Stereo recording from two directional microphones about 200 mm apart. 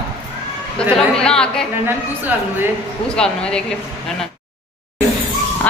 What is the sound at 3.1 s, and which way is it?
Speech, 5° left (ahead or behind).